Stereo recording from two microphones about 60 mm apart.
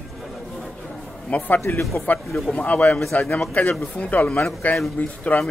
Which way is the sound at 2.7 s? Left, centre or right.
Left.